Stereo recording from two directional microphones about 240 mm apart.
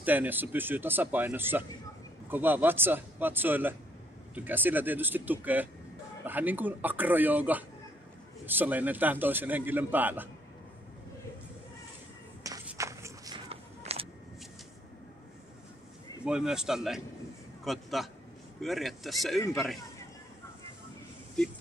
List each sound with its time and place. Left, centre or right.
0.0 s a man's voice: centre
12.4 s walk: centre
16.3 s a man's voice: centre